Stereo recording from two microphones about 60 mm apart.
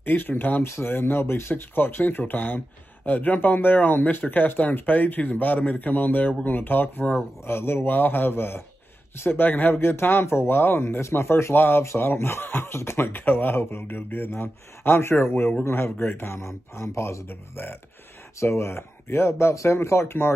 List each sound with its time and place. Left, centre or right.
0.0 s speech: left
12.7 s speech: left